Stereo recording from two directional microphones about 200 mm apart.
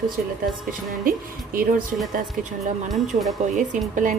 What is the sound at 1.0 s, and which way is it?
Speech, 45° right (ahead or behind).